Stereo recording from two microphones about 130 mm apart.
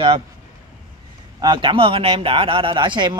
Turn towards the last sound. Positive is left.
turn(degrees=-35)  # may be behind; listen again after turning